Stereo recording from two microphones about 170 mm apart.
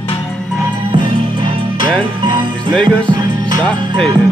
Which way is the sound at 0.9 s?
30° right (ahead or behind).